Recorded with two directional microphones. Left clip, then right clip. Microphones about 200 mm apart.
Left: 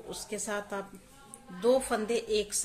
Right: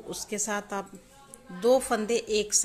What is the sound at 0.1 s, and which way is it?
A woman's voice, 30° right (ahead or behind).